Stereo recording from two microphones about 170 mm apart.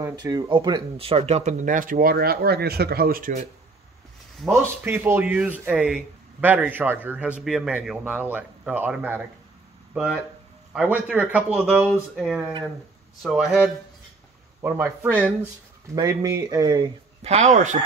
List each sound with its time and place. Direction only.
0.0 s speech: 25° right (ahead or behind); by 3.4 s 55° right (ahead or behind)
4.5 s speech: 15° right (ahead or behind)
14.6 s speech: 10° right (ahead or behind)
15.9 s speech: 20° right (ahead or behind)
17.2 s speech: 40° right (ahead or behind)